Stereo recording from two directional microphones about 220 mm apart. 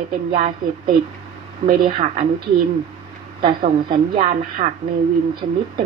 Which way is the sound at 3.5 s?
35° right (ahead or behind).